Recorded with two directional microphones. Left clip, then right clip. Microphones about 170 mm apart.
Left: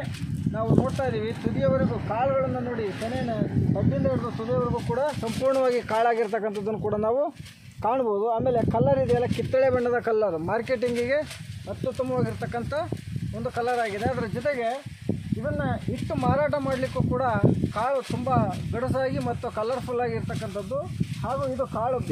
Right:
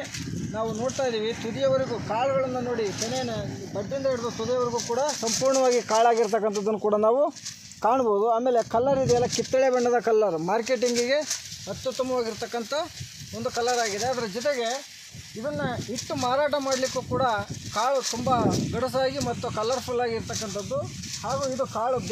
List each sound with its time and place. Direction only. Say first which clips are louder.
0.6 s speech: left 1 dB; 20° right (ahead or behind)
4.5 s speech: right 1 dB; 20° right (ahead or behind)
5.7 s speech: right 2 dB; 35° right (ahead or behind)
12.0 s speech: right 1 dB; 10° right (ahead or behind)
21.3 s speech: even; 10° right (ahead or behind)